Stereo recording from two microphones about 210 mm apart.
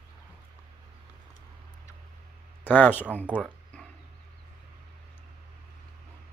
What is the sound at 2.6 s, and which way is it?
Speech, 10° left (ahead or behind).